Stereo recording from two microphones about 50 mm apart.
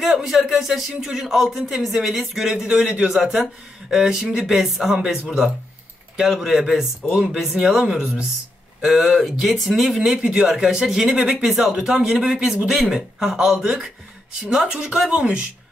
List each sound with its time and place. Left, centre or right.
0.0 s speech: centre
6.3 s speech: centre
7.1 s speech: right; by 10.1 s centre
10.1 s speech: centre
10.5 s speech: centre